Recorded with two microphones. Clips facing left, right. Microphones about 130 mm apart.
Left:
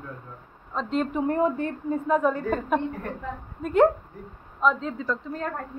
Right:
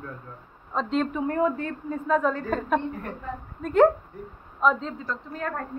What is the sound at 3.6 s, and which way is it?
A woman's voice, centre (ahead or behind).